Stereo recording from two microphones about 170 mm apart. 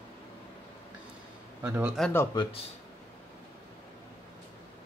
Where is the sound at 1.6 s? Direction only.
10° right (ahead or behind).